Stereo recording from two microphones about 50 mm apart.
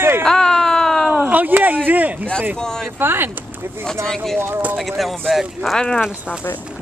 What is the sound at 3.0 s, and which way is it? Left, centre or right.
Speech, right.